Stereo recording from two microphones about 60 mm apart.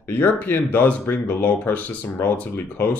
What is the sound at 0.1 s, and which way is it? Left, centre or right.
Speech, left.